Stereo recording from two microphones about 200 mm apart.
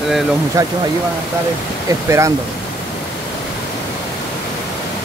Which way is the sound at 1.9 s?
15° right (ahead or behind).